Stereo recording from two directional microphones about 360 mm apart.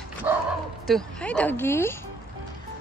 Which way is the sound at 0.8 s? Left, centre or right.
Centre.